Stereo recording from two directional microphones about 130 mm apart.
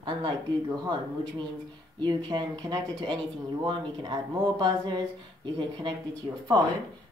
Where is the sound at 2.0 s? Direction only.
35° right (ahead or behind).